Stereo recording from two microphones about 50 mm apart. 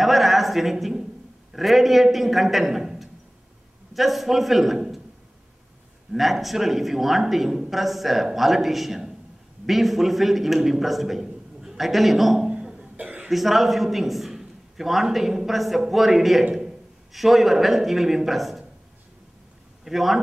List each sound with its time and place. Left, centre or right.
0.0 s a sound: centre
1.5 s speech: centre
6.1 s speech: centre
12.4 s cough: right
13.3 s a man's voice: centre
19.8 s a man's voice: centre